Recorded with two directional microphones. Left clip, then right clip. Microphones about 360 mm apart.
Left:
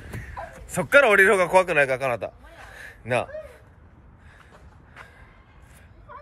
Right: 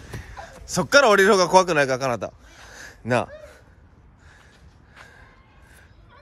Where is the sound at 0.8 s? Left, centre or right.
Centre.